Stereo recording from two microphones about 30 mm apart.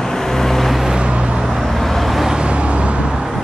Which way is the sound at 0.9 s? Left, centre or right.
Right.